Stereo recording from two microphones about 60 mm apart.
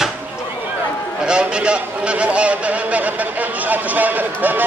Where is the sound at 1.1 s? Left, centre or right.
Centre.